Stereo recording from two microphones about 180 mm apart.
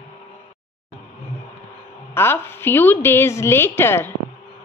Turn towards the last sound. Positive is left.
turn(degrees=15)  # may be behind; listen again after turning